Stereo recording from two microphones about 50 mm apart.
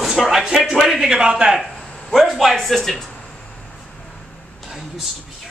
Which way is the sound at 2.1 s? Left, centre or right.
Centre.